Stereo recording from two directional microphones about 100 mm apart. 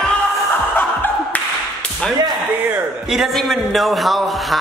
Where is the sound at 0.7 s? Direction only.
20° left (ahead or behind).